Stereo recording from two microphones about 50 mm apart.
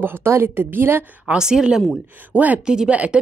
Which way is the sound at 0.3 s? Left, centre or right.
Right.